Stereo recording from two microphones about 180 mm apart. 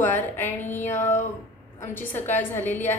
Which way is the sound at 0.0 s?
10° left (ahead or behind).